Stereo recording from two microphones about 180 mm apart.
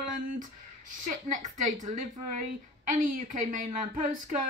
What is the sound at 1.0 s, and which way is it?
A woman's voice, 45° right (ahead or behind).